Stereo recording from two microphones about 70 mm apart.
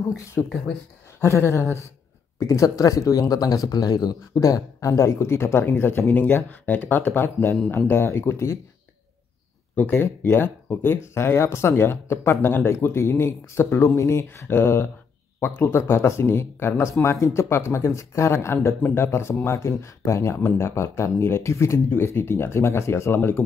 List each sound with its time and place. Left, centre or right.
0.2 s speech: left
2.4 s speech: left
9.8 s speech: left